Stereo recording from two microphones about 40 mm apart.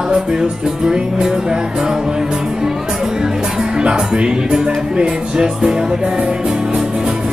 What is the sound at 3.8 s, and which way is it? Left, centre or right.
Speech, right.